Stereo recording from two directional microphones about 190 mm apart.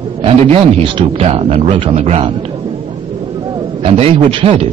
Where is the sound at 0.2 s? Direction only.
30° right (ahead or behind).